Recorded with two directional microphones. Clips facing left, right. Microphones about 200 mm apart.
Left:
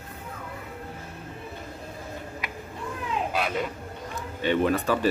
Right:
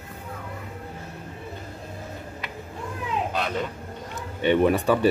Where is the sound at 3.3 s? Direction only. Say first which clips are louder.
Even; 10° left (ahead or behind).